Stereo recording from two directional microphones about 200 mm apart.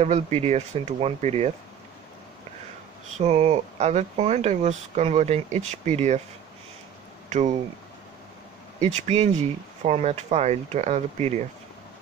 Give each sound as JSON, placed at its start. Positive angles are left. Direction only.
{"t": 0.0, "sound": "speech", "side_deg": -30}
{"t": 3.2, "sound": "speech", "side_deg": -35}
{"t": 7.2, "sound": "speech", "side_deg": -35}
{"t": 8.7, "sound": "speech", "side_deg": -35}